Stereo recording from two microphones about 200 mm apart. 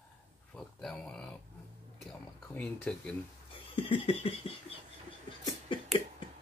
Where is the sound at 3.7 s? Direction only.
30° left (ahead or behind).